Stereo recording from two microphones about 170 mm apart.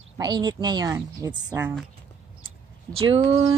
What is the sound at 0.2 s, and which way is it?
Speech, 25° right (ahead or behind).